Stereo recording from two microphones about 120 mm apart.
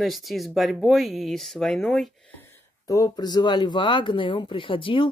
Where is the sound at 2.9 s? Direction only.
30° left (ahead or behind).